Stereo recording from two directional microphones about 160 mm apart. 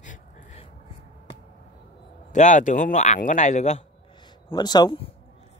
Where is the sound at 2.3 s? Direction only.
50° left (ahead or behind).